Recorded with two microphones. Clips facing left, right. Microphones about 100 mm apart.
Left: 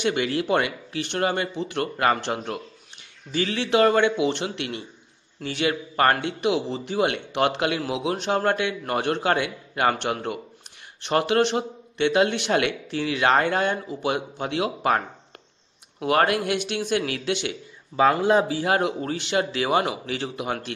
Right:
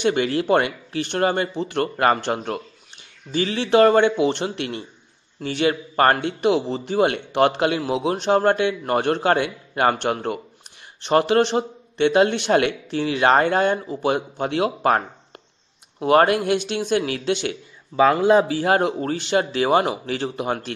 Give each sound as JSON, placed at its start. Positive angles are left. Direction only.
{"t": 0.0, "sound": "a man's voice", "side_deg": -35}
{"t": 3.3, "sound": "a man's voice", "side_deg": -30}
{"t": 16.0, "sound": "a man's voice", "side_deg": -30}
{"t": 18.6, "sound": "a man's voice", "side_deg": -40}